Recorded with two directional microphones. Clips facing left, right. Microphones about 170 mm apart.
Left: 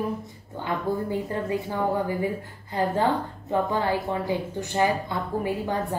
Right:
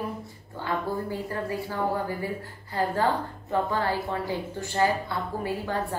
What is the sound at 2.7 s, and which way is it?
A woman's voice, 20° left (ahead or behind).